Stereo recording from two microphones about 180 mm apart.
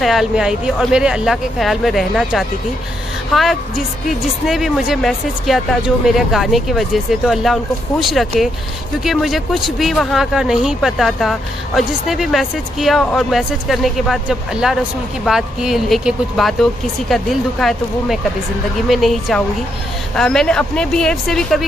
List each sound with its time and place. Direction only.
0.0 s speech: centre (ahead or behind)